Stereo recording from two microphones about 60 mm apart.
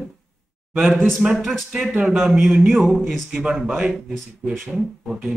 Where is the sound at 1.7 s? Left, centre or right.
Centre.